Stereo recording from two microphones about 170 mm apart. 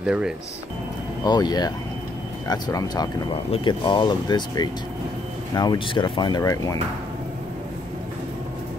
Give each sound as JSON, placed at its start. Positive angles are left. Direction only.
{"t": 0.0, "sound": "speech", "side_deg": -5}
{"t": 1.2, "sound": "speech", "side_deg": 25}